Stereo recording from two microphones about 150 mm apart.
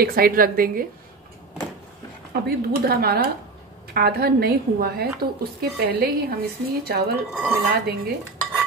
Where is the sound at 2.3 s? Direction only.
90° right.